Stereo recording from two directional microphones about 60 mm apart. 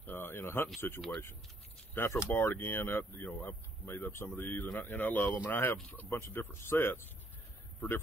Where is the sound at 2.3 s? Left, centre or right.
Left.